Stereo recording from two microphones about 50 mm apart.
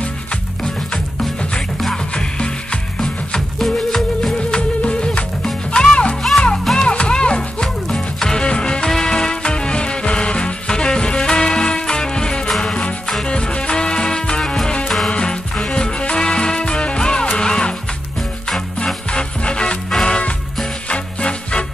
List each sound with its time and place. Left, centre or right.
2.1 s music: centre
4.6 s music: left
6.8 s music: left
19.1 s music: centre